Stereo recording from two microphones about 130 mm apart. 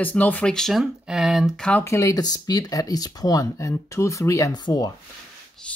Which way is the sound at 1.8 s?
25° left (ahead or behind).